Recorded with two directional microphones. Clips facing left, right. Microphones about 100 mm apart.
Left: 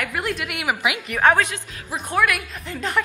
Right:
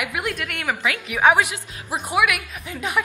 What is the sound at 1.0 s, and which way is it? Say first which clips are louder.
A woman's voice: right 1 dB; 5° right (ahead or behind).